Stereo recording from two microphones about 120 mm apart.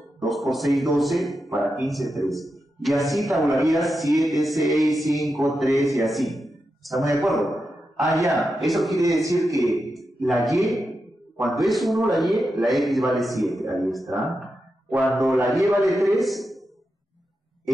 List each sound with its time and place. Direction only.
0.2 s a man's voice: centre (ahead or behind)
9.0 s a man's voice: 25° right (ahead or behind)
9.9 s a man's voice: centre (ahead or behind)